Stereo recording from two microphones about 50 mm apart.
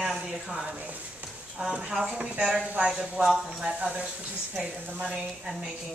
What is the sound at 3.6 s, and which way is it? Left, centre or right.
A man's voice, right.